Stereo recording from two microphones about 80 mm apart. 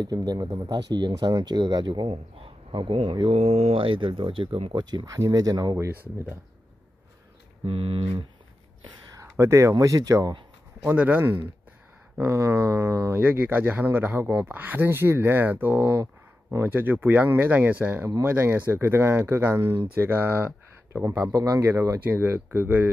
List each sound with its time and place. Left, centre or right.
0.0 s speech: right
2.7 s speech: right
5.0 s speech: right
8.0 s speech: right
9.1 s speech: right
10.8 s speech: right
12.2 s speech: right
13.2 s speech: right
15.8 s speech: right
16.6 s speech: right
20.9 s speech: right
22.0 s speech: right